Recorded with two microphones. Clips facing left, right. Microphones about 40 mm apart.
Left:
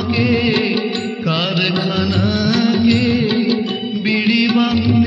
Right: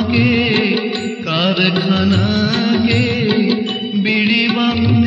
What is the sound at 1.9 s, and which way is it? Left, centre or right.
Music, right.